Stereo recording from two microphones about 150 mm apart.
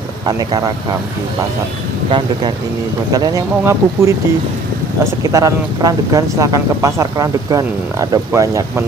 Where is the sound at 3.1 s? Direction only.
25° right (ahead or behind).